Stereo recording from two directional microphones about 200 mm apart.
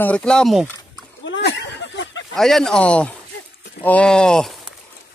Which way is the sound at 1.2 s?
65° left (ahead or behind).